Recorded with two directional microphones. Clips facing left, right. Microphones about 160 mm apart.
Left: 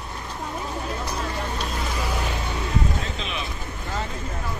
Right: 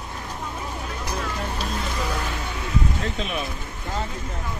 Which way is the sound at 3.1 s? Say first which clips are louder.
Right 3 dB; 50° right (ahead or behind).